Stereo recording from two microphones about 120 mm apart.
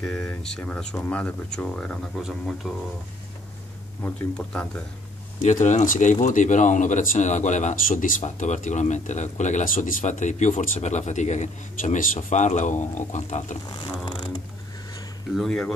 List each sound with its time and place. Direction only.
0.0 s speech: 10° left (ahead or behind)
4.0 s speech: 10° left (ahead or behind)
5.4 s speech: 90° left
15.3 s speech: 5° left (ahead or behind)